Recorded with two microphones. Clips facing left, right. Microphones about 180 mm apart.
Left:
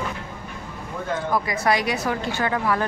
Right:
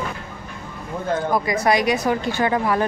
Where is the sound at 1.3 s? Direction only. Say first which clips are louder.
Right 2 dB; 15° right (ahead or behind).